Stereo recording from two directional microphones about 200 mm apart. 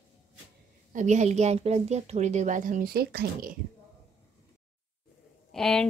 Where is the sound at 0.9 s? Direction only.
35° right (ahead or behind).